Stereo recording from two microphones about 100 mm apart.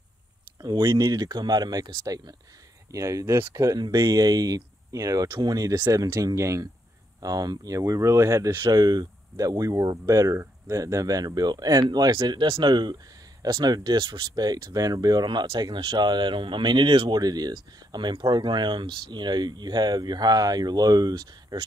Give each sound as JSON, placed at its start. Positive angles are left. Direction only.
{"t": 0.7, "sound": "speech", "side_deg": -30}
{"t": 1.0, "sound": "speech", "side_deg": -40}
{"t": 17.1, "sound": "speech", "side_deg": -40}